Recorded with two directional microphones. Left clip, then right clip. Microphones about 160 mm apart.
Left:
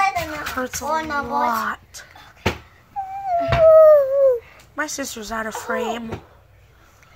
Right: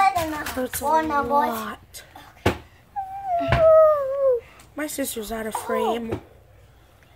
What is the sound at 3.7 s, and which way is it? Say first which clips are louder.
Dog: left 5 dB; 15° left (ahead or behind).